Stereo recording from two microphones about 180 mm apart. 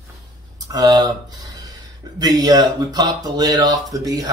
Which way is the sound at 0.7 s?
20° right (ahead or behind).